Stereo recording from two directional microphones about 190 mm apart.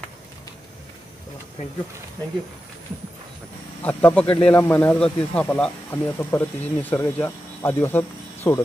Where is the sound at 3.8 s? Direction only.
5° left (ahead or behind).